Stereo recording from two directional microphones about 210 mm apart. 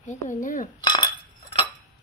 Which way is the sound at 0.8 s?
20° left (ahead or behind).